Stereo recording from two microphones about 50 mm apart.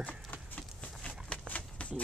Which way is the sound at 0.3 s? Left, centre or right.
Left.